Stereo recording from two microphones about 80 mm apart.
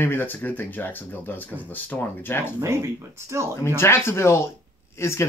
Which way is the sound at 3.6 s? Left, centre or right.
Left.